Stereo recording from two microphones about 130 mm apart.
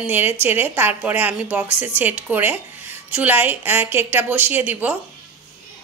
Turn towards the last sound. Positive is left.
turn(degrees=-15)  # may be behind; listen again after turning